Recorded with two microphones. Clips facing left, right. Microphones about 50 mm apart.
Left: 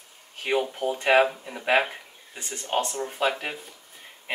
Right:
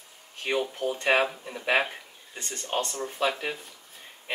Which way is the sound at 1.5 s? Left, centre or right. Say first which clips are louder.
Left 2 dB; left.